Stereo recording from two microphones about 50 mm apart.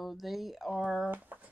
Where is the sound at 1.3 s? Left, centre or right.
Right.